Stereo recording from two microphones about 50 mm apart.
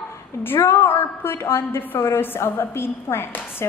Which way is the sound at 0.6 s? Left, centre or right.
Left.